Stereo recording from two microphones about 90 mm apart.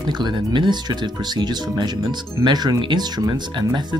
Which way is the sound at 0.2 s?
55° right (ahead or behind).